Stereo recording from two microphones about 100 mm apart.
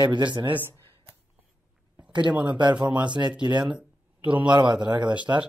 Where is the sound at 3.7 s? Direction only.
10° right (ahead or behind).